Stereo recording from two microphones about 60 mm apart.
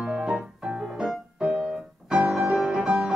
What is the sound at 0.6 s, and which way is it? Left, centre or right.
Music, centre.